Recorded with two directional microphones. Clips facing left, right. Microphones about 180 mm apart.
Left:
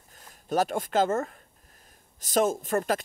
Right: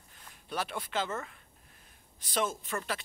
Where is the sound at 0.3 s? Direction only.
45° left (ahead or behind).